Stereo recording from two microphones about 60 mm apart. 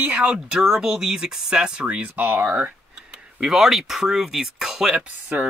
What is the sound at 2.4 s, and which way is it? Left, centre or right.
Speech, right.